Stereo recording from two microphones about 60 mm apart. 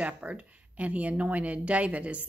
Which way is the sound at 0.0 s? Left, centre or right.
Right.